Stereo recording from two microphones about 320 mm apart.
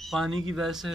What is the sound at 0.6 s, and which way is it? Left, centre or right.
Speech, centre.